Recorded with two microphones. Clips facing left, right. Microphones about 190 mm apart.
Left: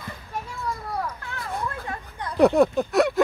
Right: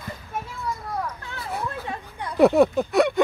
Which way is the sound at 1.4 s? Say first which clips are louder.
Right 1 dB; 5° right (ahead or behind).